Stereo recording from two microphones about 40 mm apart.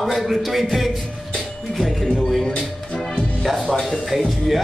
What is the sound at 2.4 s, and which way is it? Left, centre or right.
Music, left.